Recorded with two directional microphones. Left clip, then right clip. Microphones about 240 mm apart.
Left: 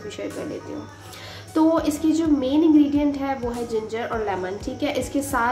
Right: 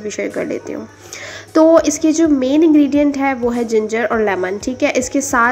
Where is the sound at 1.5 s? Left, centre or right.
Right.